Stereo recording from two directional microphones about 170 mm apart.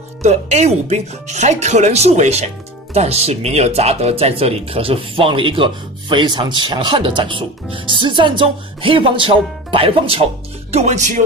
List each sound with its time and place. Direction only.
0.2 s speech: 40° right (ahead or behind)